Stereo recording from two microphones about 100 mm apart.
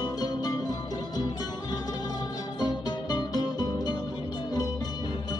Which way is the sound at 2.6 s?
45° left (ahead or behind).